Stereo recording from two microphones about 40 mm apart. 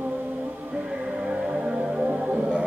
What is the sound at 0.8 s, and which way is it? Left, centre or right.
Music, centre.